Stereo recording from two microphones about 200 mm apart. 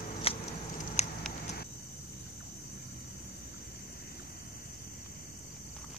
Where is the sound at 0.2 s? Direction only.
30° left (ahead or behind).